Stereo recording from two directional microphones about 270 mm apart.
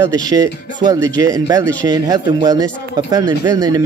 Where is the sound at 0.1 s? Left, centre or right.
Centre.